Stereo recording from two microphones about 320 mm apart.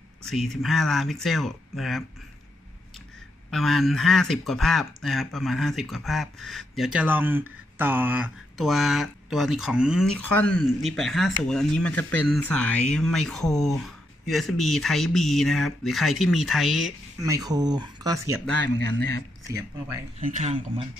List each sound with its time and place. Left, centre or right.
0.3 s speech: centre
3.4 s speech: centre
19.5 s speech: centre
20.2 s speech: right